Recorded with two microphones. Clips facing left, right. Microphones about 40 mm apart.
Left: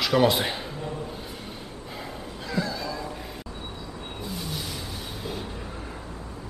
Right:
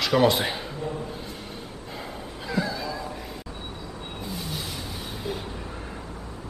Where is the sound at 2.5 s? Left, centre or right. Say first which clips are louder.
Right 1 dB; centre.